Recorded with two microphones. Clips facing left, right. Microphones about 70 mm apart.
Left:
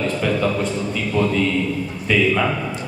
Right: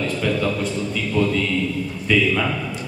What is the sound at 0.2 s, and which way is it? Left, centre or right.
A man's voice, centre.